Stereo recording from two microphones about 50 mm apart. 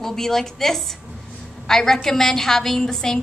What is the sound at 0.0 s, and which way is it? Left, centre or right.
A woman's voice, centre.